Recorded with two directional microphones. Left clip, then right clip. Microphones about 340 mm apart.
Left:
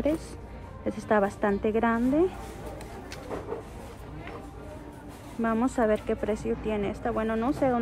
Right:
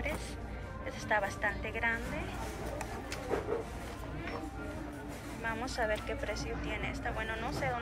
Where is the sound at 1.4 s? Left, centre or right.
Left.